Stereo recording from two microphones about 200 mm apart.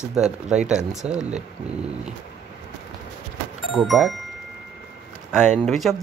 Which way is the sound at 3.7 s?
Centre (ahead or behind).